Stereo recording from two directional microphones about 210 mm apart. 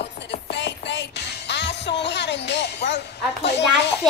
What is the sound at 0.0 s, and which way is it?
Music, 55° left (ahead or behind).